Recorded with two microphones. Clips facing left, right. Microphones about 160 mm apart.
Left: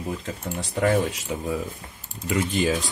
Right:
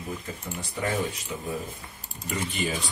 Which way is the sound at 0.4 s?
80° left.